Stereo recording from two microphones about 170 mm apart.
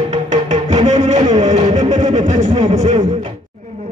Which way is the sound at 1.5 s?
40° right (ahead or behind).